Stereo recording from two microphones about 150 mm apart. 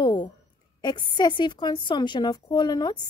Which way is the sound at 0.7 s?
30° left (ahead or behind).